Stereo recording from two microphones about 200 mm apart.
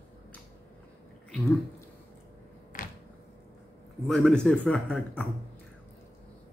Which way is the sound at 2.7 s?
45° left (ahead or behind).